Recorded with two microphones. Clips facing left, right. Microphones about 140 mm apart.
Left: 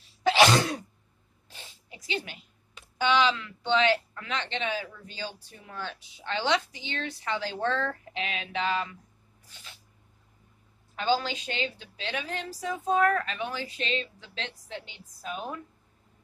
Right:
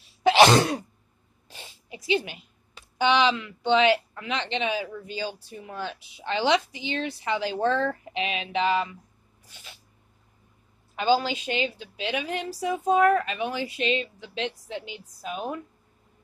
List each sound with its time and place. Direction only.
1.5 s zipper: 10° right (ahead or behind)
3.0 s a woman's voice: 20° right (ahead or behind)
11.2 s a woman's voice: 10° right (ahead or behind)